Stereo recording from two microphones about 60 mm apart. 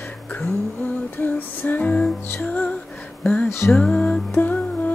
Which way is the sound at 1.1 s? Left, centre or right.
Left.